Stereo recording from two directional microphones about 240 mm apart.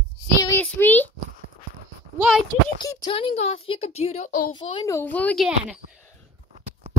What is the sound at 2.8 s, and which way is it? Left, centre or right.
A woman's voice, centre.